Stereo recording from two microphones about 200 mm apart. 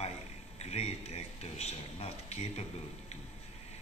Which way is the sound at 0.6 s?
30° left (ahead or behind).